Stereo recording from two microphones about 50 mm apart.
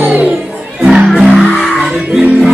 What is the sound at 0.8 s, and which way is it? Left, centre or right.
Music, right.